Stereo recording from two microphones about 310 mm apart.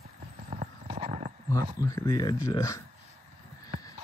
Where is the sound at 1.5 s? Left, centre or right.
Centre.